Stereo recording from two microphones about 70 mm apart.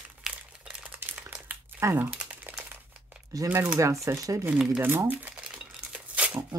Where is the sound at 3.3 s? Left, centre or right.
Right.